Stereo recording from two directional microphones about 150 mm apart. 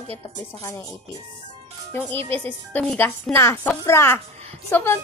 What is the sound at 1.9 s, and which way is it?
A woman's voice, 15° left (ahead or behind).